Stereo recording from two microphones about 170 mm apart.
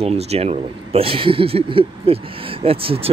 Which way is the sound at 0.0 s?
35° right (ahead or behind).